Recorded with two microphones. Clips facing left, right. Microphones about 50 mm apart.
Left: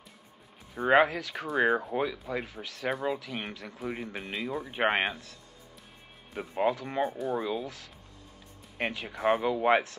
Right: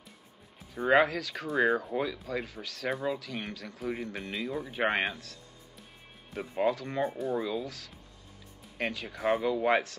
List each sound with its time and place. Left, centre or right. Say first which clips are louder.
0.7 s speech: left 1 dB; centre
4.6 s speech: left 2 dB; left
6.3 s speech: left 1 dB; centre
6.6 s speech: left 1 dB; centre
7.1 s speech: left 1 dB; centre
7.3 s speech: even; centre